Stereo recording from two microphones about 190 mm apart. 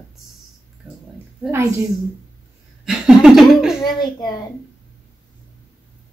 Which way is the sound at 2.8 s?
Centre (ahead or behind).